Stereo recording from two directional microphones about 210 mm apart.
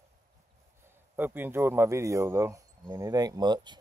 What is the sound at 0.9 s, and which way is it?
Speech, 10° right (ahead or behind).